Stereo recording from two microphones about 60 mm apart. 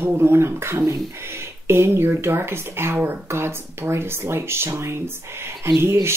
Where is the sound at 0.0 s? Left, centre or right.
Right.